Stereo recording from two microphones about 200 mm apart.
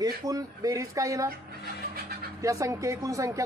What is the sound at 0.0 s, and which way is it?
A man's voice, 20° right (ahead or behind).